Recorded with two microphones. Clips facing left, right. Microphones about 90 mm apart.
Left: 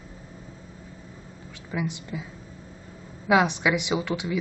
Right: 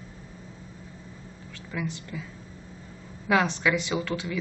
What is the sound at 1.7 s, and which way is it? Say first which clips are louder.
Speech: left 3 dB; 15° left (ahead or behind).